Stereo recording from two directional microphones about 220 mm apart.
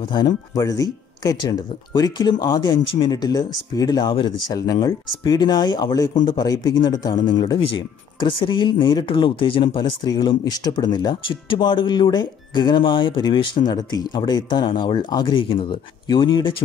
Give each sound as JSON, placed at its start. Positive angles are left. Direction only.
{"t": 0.1, "sound": "speech", "side_deg": 15}